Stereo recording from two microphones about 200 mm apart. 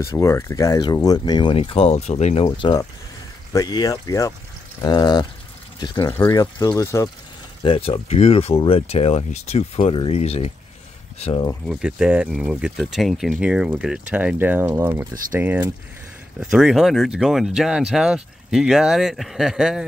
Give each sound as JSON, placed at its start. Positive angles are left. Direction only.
{"t": 0.0, "sound": "speech", "side_deg": 15}
{"t": 7.6, "sound": "speech", "side_deg": 25}
{"t": 11.6, "sound": "speech", "side_deg": -5}